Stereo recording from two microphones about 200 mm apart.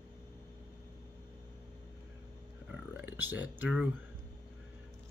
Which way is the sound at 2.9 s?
10° right (ahead or behind).